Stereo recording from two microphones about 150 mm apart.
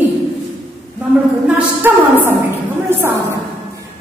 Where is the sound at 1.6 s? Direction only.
15° right (ahead or behind).